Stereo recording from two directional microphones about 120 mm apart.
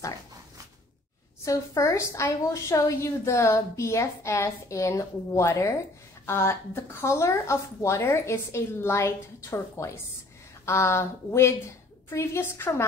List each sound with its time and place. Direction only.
1.4 s a woman's voice: 25° left (ahead or behind)